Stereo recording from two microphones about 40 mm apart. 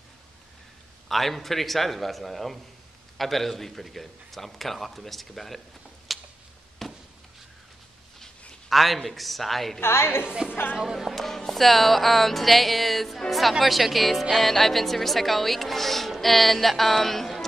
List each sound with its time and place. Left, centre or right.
1.0 s speech: centre
6.1 s a sound: centre
8.2 s a man's voice: centre
9.8 s a woman's voice: left
10.2 s a woman's voice: right
11.1 s speech: centre